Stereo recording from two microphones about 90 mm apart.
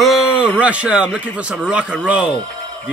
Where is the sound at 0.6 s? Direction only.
15° right (ahead or behind).